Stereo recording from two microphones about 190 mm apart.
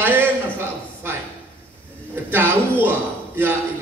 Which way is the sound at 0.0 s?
10° right (ahead or behind).